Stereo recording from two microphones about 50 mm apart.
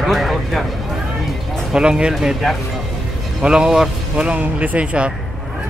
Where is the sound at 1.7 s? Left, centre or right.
Centre.